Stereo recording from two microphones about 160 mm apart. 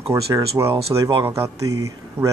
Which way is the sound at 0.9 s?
25° right (ahead or behind).